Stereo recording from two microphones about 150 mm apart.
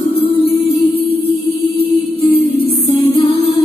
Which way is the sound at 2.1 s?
40° left (ahead or behind).